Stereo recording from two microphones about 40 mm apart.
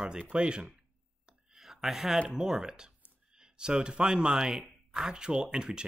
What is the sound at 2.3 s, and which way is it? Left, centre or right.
Speech, centre.